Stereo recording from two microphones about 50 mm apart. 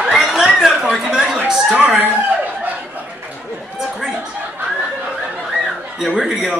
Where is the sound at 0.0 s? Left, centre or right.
Centre.